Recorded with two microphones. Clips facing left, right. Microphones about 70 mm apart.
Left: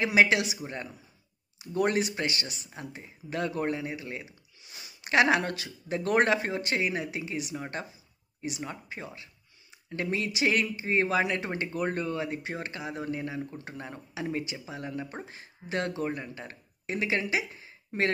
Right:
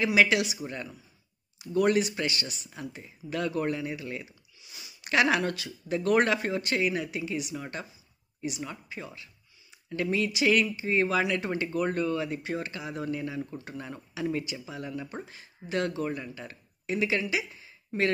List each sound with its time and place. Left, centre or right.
0.0 s speech: left
4.6 s speech: left